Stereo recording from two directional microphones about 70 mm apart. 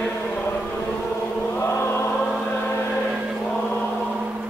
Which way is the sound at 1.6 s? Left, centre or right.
Left.